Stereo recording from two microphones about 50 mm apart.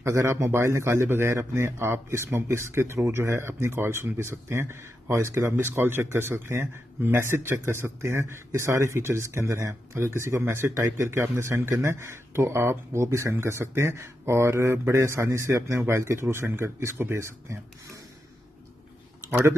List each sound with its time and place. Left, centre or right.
0.0 s a man's voice: right
0.3 s speech: right
1.3 s speech: right